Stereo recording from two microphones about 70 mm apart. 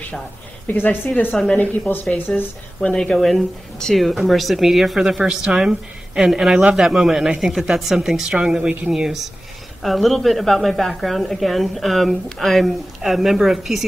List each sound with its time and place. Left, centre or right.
0.7 s speech: left
2.9 s a woman's voice: centre
8.5 s a woman's voice: right
8.8 s a woman's voice: centre